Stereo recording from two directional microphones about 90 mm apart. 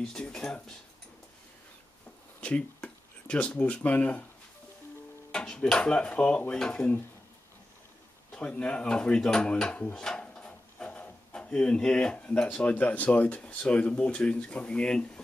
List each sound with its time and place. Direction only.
0.0 s speech: 10° left (ahead or behind)
2.4 s speech: 15° left (ahead or behind)
5.3 s speech: 10° left (ahead or behind)
8.3 s speech: 15° left (ahead or behind)